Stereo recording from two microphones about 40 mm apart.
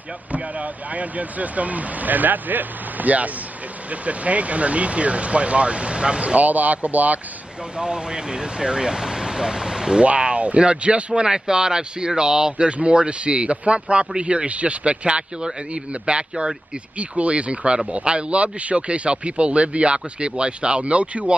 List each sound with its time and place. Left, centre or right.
0.3 s speech: right
7.7 s speech: right
10.0 s speech: right
11.2 s speech: centre
12.6 s speech: right